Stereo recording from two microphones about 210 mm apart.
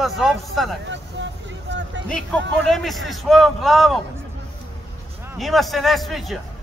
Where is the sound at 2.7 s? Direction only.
Centre (ahead or behind).